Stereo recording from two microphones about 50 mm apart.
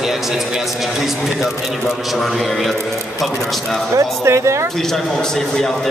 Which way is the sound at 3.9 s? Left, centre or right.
Right.